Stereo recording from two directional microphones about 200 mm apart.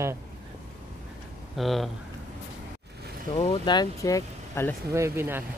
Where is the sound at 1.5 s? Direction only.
Centre (ahead or behind).